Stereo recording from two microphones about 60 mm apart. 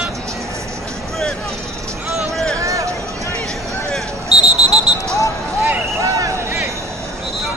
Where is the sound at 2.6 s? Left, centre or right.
Right.